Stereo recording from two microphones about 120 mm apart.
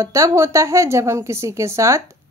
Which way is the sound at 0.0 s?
25° right (ahead or behind).